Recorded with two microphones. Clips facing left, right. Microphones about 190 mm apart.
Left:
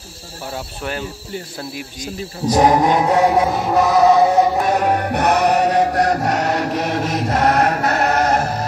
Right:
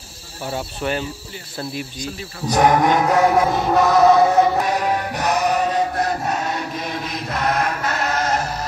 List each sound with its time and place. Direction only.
0.5 s speech: centre (ahead or behind)
2.5 s chant: 30° left (ahead or behind)
3.4 s music: 5° left (ahead or behind)
4.6 s music: 55° left (ahead or behind); by 7.2 s 75° left (ahead or behind)
7.3 s music: 65° left (ahead or behind)